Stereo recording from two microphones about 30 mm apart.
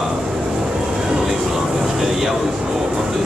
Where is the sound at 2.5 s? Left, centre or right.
Right.